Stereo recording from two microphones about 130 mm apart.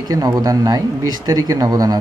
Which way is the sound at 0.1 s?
30° right (ahead or behind).